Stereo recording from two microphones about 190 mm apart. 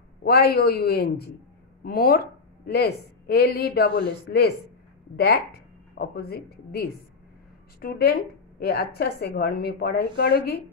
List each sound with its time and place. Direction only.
0.2 s a woman's voice: 55° left (ahead or behind)